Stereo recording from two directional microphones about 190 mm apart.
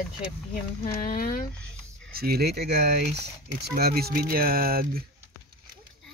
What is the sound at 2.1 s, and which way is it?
Speech, 55° right (ahead or behind).